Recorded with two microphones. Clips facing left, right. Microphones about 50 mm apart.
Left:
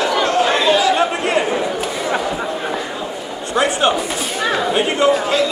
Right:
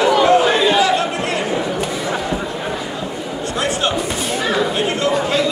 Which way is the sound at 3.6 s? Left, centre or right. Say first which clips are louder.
Left 5 dB; left.